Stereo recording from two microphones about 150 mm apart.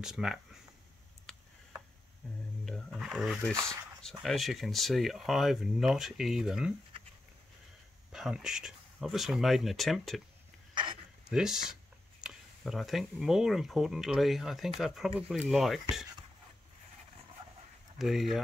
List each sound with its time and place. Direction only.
0.0 s speech: 5° right (ahead or behind)
1.3 s tick-tock: 5° left (ahead or behind)
2.6 s speech: centre (ahead or behind)
8.1 s speech: 5° right (ahead or behind)
10.7 s a sound: 30° right (ahead or behind)
11.2 s speech: 5° right (ahead or behind)
17.9 s speech: centre (ahead or behind)